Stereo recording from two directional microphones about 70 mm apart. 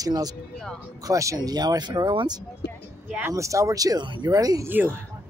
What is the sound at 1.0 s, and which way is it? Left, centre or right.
Speech, right.